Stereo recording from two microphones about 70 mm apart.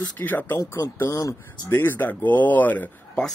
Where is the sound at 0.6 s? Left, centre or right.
Left.